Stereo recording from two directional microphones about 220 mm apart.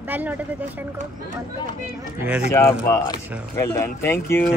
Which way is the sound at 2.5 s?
10° left (ahead or behind).